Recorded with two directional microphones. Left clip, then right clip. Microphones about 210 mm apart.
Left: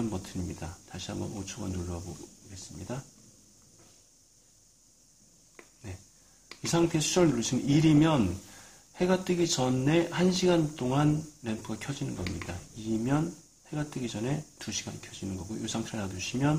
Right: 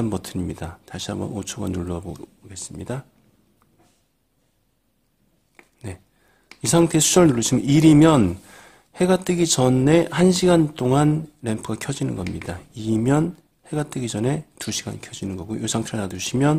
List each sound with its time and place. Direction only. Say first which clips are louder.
0.1 s speech: right 10 dB; 45° right (ahead or behind)
6.6 s speech: right 10 dB; 45° right (ahead or behind)
13.7 s speech: right 9 dB; 45° right (ahead or behind)